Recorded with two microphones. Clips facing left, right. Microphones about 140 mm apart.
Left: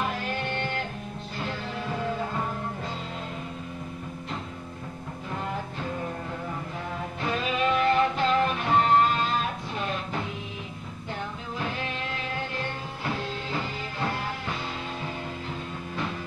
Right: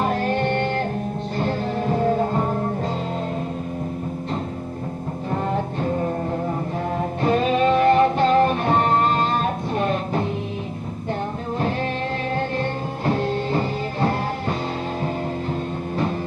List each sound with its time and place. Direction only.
0.0 s music: 40° right (ahead or behind)
5.3 s music: 40° right (ahead or behind)
12.4 s music: 40° right (ahead or behind)